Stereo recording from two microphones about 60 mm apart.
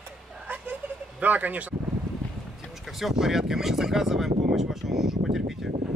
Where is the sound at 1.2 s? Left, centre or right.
Right.